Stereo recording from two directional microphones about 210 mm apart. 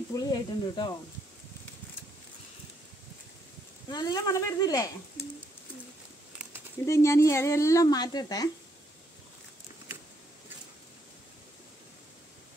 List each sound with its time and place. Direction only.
0.1 s speech: 20° left (ahead or behind)
3.9 s speech: 20° left (ahead or behind)
6.9 s speech: 15° left (ahead or behind)